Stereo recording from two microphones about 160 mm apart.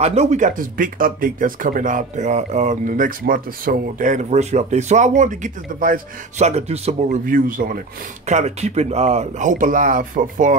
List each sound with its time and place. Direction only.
0.0 s speech: 45° right (ahead or behind)
7.2 s speech: 60° right (ahead or behind)
8.3 s speech: 45° right (ahead or behind)